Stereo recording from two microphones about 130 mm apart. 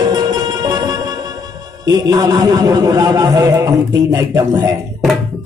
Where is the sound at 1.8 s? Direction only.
30° right (ahead or behind).